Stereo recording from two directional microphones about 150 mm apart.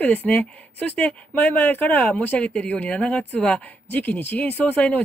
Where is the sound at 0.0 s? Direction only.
10° left (ahead or behind).